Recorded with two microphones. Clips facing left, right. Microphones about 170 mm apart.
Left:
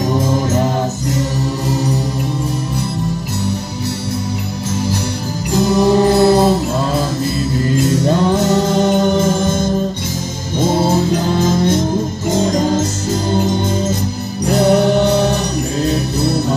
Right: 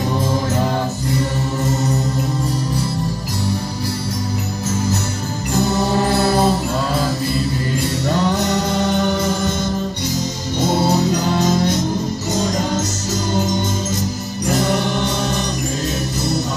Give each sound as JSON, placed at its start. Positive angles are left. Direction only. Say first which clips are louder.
{"t": 5.7, "sound": "music", "louder": "left 8 dB", "side_deg": 20}
{"t": 7.8, "sound": "music", "louder": "left 5 dB", "side_deg": 50}
{"t": 8.8, "sound": "music", "louder": "left 5 dB", "side_deg": 25}
{"t": 9.3, "sound": "music", "louder": "left 4 dB", "side_deg": 50}
{"t": 10.9, "sound": "music", "louder": "left 2 dB", "side_deg": 50}
{"t": 14.4, "sound": "music", "louder": "left 7 dB", "side_deg": 65}